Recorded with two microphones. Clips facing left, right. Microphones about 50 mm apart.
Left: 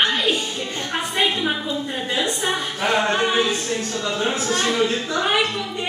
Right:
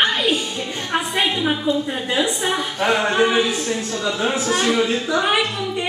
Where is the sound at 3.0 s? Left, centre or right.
Centre.